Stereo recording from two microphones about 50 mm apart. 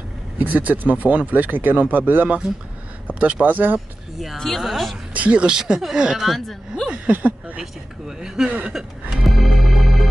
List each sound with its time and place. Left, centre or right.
0.4 s speech: right
2.2 s speech: right
3.1 s a sound: right
3.4 s speech: right
4.4 s speech: centre
5.1 s speech: right
5.5 s speech: centre
6.2 s speech: centre
6.9 s speech: right
8.2 s speech: centre
9.2 s organ: centre